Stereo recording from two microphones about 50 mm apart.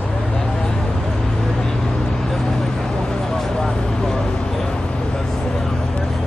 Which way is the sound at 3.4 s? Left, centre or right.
Centre.